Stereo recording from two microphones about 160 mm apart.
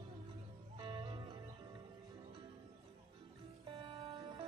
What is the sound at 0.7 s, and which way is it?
Music, 30° right (ahead or behind).